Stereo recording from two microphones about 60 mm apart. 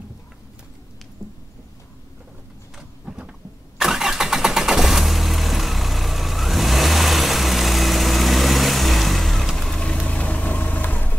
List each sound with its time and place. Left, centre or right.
3.1 s vehicle: centre
10.0 s vehicle: left